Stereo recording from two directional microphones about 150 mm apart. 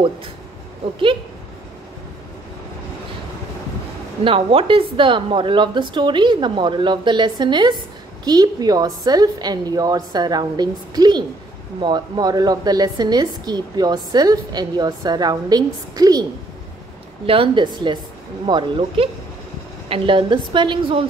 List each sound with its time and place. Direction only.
4.2 s a woman's voice: 35° right (ahead or behind)
17.3 s a woman's voice: 35° right (ahead or behind)